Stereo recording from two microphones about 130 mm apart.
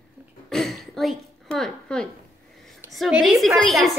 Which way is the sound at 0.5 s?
5° left (ahead or behind).